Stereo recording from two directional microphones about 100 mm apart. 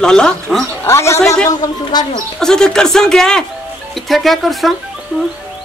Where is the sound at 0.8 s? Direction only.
25° left (ahead or behind).